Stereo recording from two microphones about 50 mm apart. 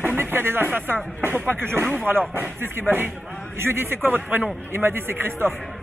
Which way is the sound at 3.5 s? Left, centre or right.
Right.